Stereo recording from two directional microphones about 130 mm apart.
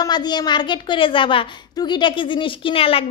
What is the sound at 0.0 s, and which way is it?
A woman's voice, 35° left (ahead or behind).